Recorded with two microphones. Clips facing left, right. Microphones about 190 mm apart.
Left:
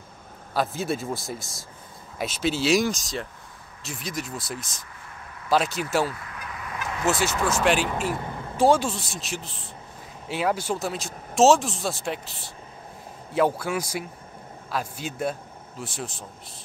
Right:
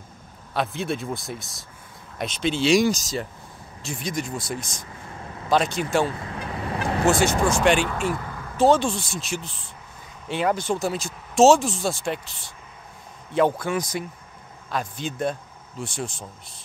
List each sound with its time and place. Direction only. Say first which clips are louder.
0.6 s speech: even; centre (ahead or behind)
5.0 s vehicle: right 7 dB; 30° right (ahead or behind)
5.8 s speech: right 2 dB; 5° left (ahead or behind)
6.0 s vehicle: right 4 dB; 30° right (ahead or behind)
7.4 s speech: even; 5° left (ahead or behind)
8.1 s vehicle: right 1 dB; 25° left (ahead or behind)
8.5 s a man's voice: right 2 dB; 10° left (ahead or behind)